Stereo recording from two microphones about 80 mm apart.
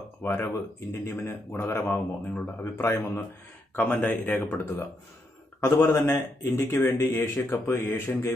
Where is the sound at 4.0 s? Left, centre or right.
Left.